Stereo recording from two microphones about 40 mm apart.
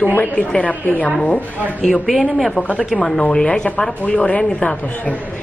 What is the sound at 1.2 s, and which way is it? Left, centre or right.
Speech, left.